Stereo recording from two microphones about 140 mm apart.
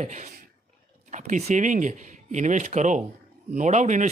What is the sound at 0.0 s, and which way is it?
Speech, 60° right (ahead or behind).